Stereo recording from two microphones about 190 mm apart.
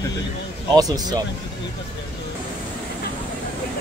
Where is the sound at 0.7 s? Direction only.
20° right (ahead or behind).